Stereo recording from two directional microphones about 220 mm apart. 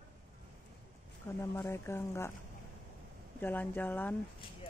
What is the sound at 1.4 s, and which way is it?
Speech, 10° left (ahead or behind).